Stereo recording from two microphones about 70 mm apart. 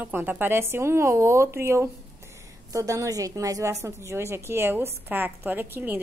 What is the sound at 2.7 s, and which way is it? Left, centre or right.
A woman's voice, right.